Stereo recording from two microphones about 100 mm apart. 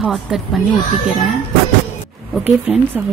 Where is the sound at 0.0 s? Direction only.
Centre (ahead or behind).